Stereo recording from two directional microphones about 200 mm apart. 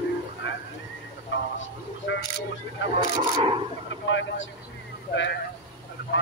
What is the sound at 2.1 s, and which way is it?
Single-lens reflex camera, 70° left (ahead or behind).